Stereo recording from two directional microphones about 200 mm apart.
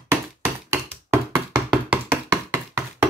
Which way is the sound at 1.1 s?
10° right (ahead or behind).